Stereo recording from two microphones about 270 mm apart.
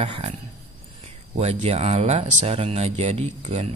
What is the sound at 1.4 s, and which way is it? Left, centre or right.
Speech, right.